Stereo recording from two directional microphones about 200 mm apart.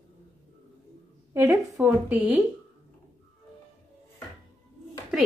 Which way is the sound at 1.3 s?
15° right (ahead or behind).